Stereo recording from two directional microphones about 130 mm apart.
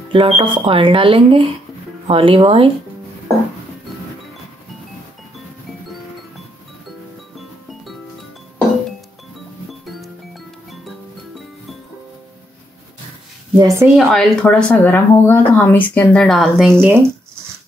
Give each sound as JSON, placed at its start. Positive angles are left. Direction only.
{"t": 0.1, "sound": "speech", "side_deg": -40}
{"t": 9.7, "sound": "music", "side_deg": 0}
{"t": 13.6, "sound": "speech", "side_deg": -25}
{"t": 13.9, "sound": "speech", "side_deg": 5}
{"t": 16.7, "sound": "speech", "side_deg": -15}